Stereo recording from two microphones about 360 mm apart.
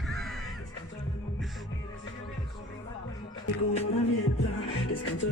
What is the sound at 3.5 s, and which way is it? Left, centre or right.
Music, centre.